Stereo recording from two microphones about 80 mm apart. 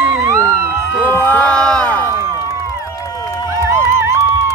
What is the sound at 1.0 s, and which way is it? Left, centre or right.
Speech, left.